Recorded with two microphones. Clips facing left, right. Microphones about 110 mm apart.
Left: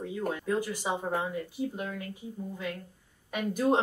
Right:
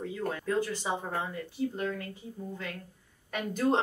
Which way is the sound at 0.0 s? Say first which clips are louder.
Left 1 dB; 15° left (ahead or behind).